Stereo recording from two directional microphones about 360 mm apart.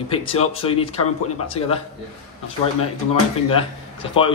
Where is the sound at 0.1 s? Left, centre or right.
Centre.